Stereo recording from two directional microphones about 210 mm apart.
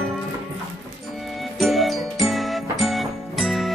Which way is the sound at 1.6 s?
Centre (ahead or behind).